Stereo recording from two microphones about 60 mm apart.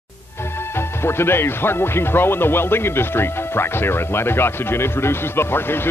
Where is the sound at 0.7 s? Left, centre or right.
Left.